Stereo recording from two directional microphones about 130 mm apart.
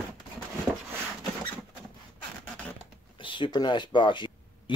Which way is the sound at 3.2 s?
40° left (ahead or behind).